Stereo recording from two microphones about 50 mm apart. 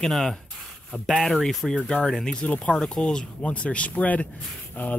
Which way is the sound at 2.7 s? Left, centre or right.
Centre.